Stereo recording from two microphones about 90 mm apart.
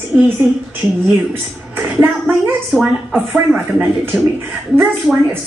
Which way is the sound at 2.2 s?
5° right (ahead or behind).